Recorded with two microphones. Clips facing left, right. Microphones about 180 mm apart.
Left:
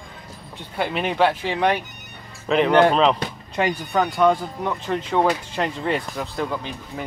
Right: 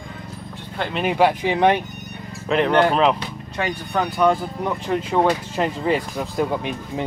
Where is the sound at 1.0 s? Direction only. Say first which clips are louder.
Right 4 dB; 15° right (ahead or behind).